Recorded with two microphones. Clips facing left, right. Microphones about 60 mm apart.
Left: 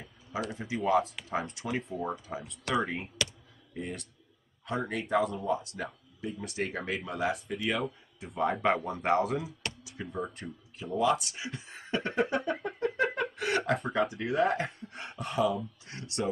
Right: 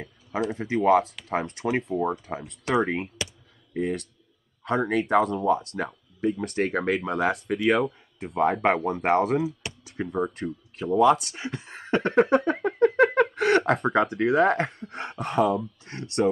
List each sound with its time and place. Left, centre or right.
0.3 s speech: right
1.9 s speech: right
2.2 s speech: right
8.2 s speech: right
9.2 s speech: right
9.8 s speech: right